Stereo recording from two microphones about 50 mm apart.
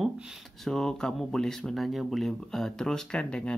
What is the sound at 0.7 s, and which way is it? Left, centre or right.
Speech, centre.